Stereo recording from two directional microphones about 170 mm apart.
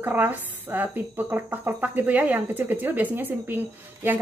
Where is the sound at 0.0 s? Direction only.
10° right (ahead or behind).